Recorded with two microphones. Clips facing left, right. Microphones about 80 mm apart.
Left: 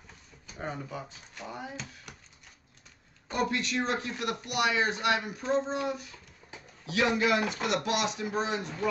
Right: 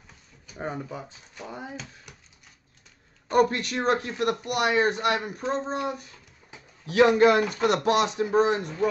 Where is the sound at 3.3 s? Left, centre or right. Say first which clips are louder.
Right 8 dB; right.